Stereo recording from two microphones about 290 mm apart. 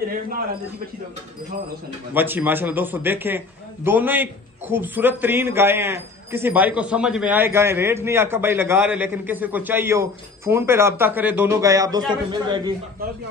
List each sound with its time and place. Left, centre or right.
2.1 s a man's voice: centre